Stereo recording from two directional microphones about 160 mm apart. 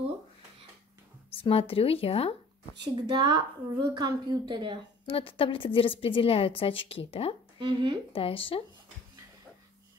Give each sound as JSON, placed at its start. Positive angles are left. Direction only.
{"t": 1.4, "sound": "a woman's voice", "side_deg": 35}
{"t": 2.8, "sound": "a woman's voice", "side_deg": -25}
{"t": 5.0, "sound": "a woman's voice", "side_deg": 35}
{"t": 7.5, "sound": "speech", "side_deg": -30}
{"t": 8.1, "sound": "a woman's voice", "side_deg": 35}